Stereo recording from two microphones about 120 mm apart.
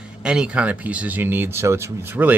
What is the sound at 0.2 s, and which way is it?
Speech, 10° right (ahead or behind).